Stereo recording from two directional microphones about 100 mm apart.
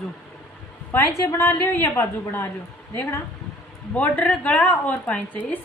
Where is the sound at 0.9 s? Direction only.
30° left (ahead or behind).